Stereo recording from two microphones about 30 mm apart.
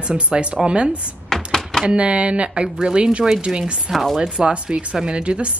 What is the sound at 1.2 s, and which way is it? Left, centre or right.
Typewriter, centre.